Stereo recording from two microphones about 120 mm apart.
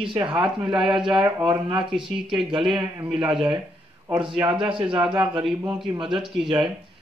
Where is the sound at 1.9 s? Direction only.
5° right (ahead or behind).